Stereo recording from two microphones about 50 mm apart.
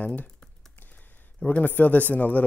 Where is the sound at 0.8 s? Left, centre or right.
Left.